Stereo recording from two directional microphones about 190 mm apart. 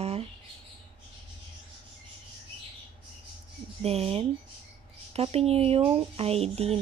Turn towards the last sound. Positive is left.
turn(degrees=-35)  # may be behind; listen again after turning